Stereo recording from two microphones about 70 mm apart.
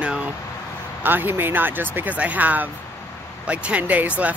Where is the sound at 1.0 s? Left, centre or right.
Right.